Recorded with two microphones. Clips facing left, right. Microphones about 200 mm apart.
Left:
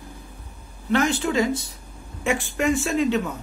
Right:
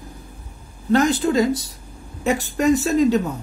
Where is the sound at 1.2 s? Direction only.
35° right (ahead or behind).